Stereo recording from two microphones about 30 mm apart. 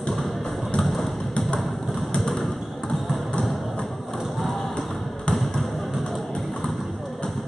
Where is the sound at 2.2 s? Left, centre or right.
Centre.